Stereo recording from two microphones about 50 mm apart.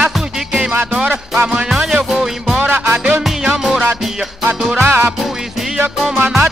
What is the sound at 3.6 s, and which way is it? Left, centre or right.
Music, centre.